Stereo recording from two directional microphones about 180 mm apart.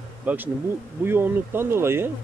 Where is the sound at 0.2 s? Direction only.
10° right (ahead or behind).